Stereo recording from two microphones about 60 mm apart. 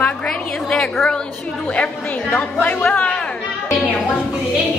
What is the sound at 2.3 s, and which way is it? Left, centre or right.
Speech, left.